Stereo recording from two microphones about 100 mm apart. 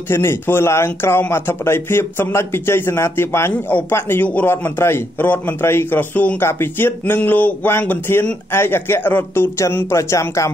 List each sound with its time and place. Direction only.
0.1 s speech: 25° left (ahead or behind)